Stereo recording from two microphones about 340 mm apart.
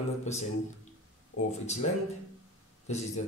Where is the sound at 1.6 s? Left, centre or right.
Centre.